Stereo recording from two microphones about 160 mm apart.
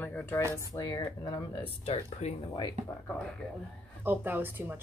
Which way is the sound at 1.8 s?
35° left (ahead or behind).